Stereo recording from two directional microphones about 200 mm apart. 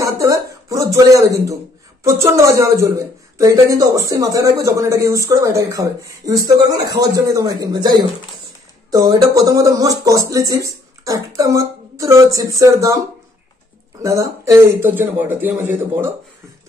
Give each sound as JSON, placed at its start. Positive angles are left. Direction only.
{"t": 0.0, "sound": "a sound", "side_deg": -15}
{"t": 2.0, "sound": "a man's voice", "side_deg": -15}
{"t": 8.9, "sound": "a man's voice", "side_deg": -15}
{"t": 14.0, "sound": "a man's voice", "side_deg": -15}